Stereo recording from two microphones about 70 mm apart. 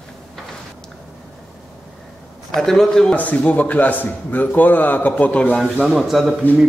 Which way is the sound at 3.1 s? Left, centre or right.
Left.